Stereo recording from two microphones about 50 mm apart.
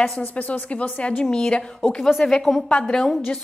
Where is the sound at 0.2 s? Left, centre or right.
Left.